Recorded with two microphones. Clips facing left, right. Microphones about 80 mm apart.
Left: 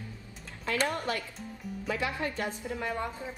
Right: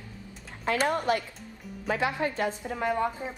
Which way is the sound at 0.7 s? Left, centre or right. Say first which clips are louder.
Right 4 dB; right.